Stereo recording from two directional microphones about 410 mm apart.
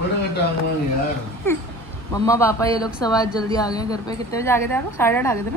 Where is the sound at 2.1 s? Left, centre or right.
Centre.